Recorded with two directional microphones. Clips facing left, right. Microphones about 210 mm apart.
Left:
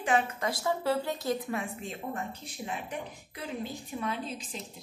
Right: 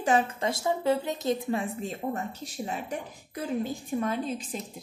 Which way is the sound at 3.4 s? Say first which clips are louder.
Right 7 dB; 45° right (ahead or behind).